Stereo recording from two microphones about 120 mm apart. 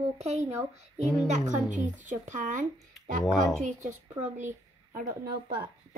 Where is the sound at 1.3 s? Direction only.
90° right.